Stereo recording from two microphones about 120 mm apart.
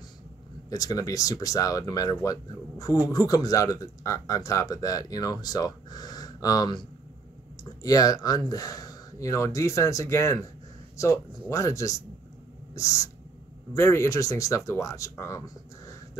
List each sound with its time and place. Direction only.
0.7 s speech: 30° left (ahead or behind)
7.8 s speech: 30° left (ahead or behind)